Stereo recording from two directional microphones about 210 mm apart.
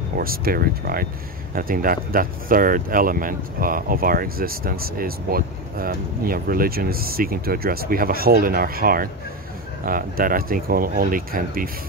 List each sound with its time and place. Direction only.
0.2 s speech: 45° right (ahead or behind)